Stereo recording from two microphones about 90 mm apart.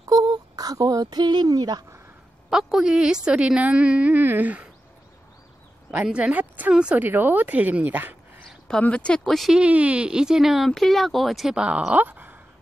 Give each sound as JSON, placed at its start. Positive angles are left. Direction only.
{"t": 0.0, "sound": "speech", "side_deg": -45}
{"t": 2.5, "sound": "speech", "side_deg": -5}
{"t": 5.9, "sound": "speech", "side_deg": -10}
{"t": 7.1, "sound": "speech", "side_deg": -20}
{"t": 8.5, "sound": "a sound", "side_deg": 5}
{"t": 8.8, "sound": "speech", "side_deg": 15}
{"t": 9.5, "sound": "speech", "side_deg": -15}